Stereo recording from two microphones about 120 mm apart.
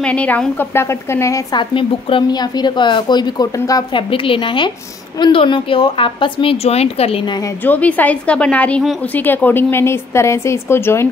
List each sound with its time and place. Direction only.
0.0 s a woman's voice: 10° left (ahead or behind)
1.6 s a woman's voice: 45° left (ahead or behind); by 3.8 s 30° left (ahead or behind)
3.9 s a woman's voice: 45° left (ahead or behind)
7.6 s a woman's voice: 15° left (ahead or behind)